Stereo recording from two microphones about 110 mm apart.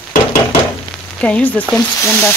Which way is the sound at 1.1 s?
10° left (ahead or behind).